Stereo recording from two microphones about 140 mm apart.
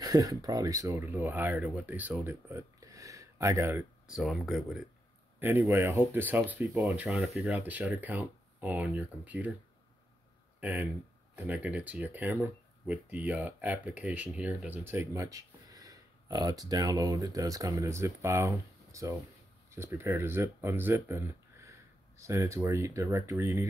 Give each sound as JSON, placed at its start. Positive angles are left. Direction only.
{"t": 0.0, "sound": "speech", "side_deg": -25}
{"t": 4.1, "sound": "speech", "side_deg": -5}
{"t": 5.4, "sound": "speech", "side_deg": -15}
{"t": 10.6, "sound": "speech", "side_deg": -10}